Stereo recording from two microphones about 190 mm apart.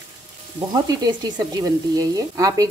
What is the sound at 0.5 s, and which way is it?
A woman's voice, 20° right (ahead or behind).